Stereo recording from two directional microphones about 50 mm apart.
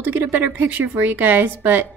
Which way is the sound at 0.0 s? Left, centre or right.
Right.